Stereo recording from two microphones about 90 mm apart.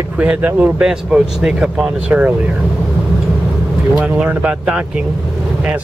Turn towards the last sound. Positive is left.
turn(degrees=-10)  # may be behind; listen again after turning